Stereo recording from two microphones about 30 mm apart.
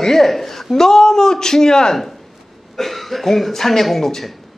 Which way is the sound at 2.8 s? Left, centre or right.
Centre.